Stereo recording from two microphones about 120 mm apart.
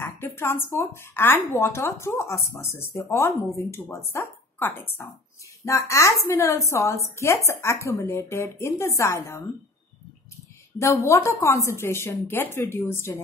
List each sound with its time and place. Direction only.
0.0 s a woman's voice: 20° left (ahead or behind)
10.8 s a woman's voice: 25° left (ahead or behind)